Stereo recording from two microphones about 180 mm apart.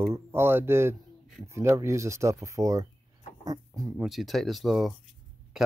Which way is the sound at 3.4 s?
20° right (ahead or behind).